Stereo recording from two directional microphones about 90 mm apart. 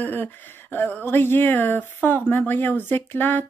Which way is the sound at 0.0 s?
20° left (ahead or behind).